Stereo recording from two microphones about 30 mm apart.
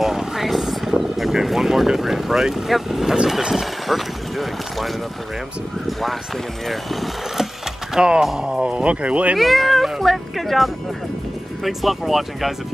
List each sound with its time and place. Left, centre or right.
0.0 s vehicle: centre
1.3 s speech: centre
3.8 s speech: centre
5.9 s speech: centre
8.0 s speech: right
8.8 s speech: right
9.4 s speech: centre